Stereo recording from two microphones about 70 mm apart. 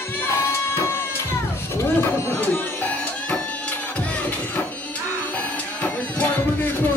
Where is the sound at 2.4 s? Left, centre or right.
Left.